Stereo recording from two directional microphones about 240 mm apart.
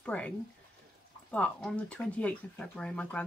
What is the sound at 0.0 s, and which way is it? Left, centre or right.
Speech, centre.